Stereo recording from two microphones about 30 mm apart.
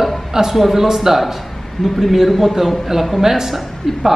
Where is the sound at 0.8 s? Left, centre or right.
Centre.